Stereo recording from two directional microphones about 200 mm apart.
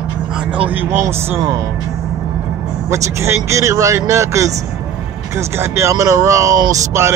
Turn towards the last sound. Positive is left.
turn(degrees=-15)  # may be behind; listen again after turning